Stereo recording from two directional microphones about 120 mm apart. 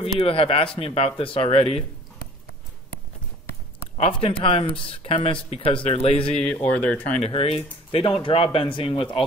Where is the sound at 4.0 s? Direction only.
45° left (ahead or behind).